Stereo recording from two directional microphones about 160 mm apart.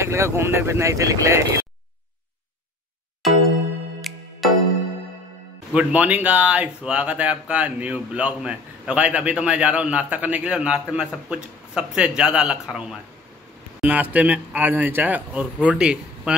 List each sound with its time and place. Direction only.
0.0 s speech: 15° right (ahead or behind)
4.1 s music: centre (ahead or behind)
5.7 s speech: 5° right (ahead or behind)